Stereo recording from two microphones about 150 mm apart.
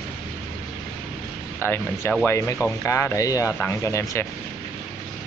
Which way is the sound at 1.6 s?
15° left (ahead or behind).